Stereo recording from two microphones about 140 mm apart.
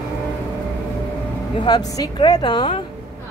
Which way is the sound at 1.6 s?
30° left (ahead or behind).